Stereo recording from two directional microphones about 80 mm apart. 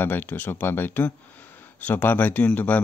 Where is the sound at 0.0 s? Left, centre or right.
Left.